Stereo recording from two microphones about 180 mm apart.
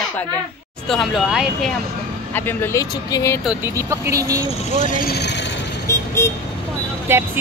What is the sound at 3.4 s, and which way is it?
Speech, 15° right (ahead or behind).